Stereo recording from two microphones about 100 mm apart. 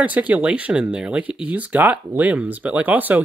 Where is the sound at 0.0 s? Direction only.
15° right (ahead or behind).